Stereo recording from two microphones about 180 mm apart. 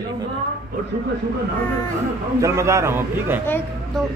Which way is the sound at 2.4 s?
15° right (ahead or behind).